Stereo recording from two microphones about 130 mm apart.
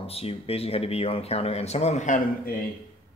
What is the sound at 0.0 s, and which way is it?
Speech, 50° left (ahead or behind).